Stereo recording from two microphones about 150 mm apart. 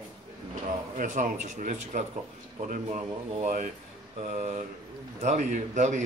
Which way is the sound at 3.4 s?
65° right (ahead or behind).